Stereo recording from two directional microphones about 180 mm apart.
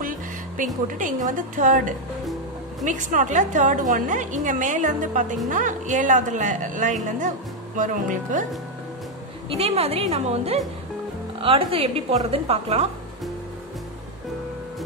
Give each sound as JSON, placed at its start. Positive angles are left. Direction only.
{"t": 0.6, "sound": "a woman's voice", "side_deg": -50}
{"t": 9.5, "sound": "a woman's voice", "side_deg": -35}